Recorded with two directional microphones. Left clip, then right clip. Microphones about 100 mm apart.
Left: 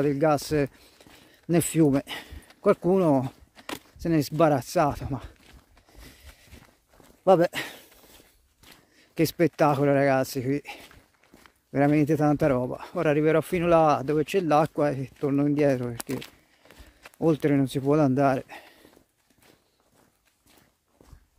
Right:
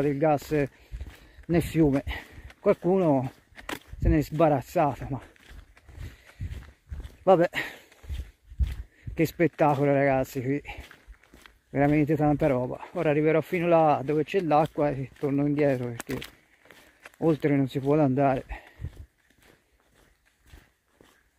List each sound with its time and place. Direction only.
0.0 s speech: 45° left (ahead or behind)
1.5 s speech: 55° left (ahead or behind)
7.2 s a sound: 30° left (ahead or behind)
9.1 s speech: 40° left (ahead or behind)